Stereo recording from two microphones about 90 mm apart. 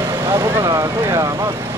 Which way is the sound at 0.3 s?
30° right (ahead or behind).